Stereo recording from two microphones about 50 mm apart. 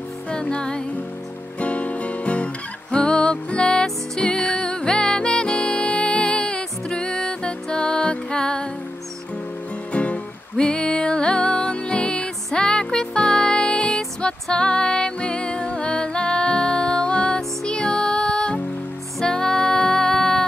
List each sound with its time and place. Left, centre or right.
0.3 s music: centre
1.6 s music: left
9.9 s music: left